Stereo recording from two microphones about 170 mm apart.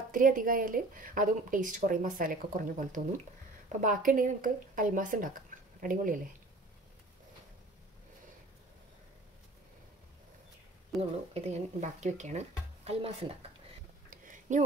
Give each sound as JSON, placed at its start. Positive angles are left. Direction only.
{"t": 0.1, "sound": "speech", "side_deg": -55}
{"t": 11.0, "sound": "speech", "side_deg": -40}
{"t": 14.1, "sound": "a sound", "side_deg": -50}